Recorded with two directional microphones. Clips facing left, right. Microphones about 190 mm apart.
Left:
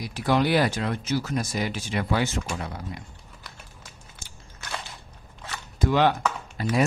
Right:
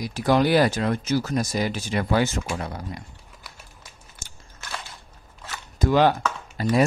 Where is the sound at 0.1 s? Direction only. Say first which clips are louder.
Right 3 dB; 40° right (ahead or behind).